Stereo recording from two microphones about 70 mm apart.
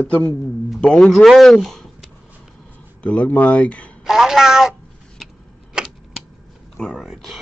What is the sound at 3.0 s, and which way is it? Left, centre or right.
Speech, centre.